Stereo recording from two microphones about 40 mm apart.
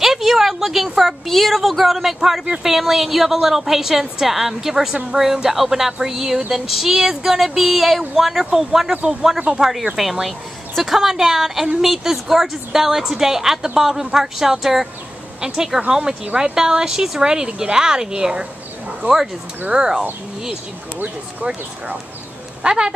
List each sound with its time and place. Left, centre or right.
0.0 s a sound: centre
1.2 s a woman's voice: centre; by 18.5 s right
19.0 s speech: right
19.7 s a woman's voice: centre
22.6 s a woman's voice: right